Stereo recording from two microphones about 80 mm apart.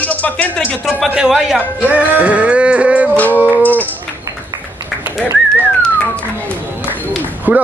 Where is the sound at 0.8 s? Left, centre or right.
Centre.